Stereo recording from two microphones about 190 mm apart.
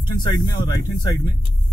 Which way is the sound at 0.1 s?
25° left (ahead or behind).